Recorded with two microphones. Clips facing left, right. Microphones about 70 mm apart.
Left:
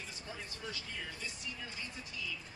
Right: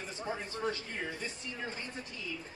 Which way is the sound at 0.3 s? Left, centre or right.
Right.